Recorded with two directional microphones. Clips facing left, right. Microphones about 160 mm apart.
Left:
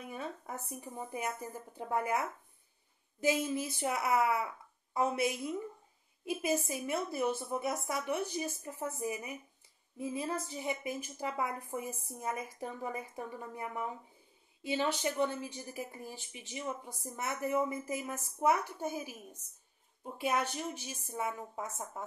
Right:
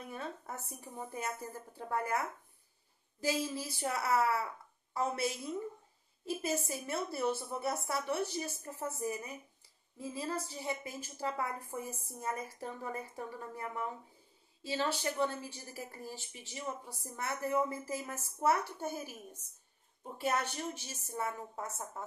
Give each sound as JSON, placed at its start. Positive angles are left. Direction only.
{"t": 0.0, "sound": "a woman's voice", "side_deg": 10}
{"t": 20.2, "sound": "a woman's voice", "side_deg": 10}